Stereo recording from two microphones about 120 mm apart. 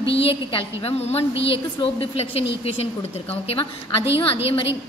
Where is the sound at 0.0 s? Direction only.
50° left (ahead or behind).